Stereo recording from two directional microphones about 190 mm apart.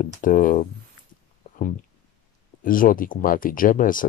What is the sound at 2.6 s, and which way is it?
Speech, 45° left (ahead or behind).